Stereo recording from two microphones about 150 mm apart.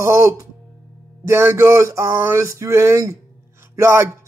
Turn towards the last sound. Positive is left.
turn(degrees=-20)  # may be behind; listen again after turning